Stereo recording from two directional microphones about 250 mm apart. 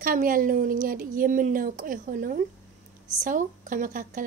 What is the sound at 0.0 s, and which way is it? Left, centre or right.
A woman's voice, right.